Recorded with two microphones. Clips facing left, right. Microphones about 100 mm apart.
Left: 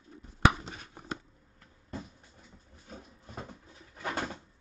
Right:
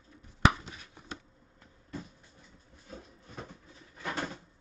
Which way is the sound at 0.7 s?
45° left (ahead or behind).